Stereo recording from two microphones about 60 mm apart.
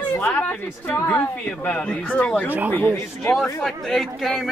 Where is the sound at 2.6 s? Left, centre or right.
Left.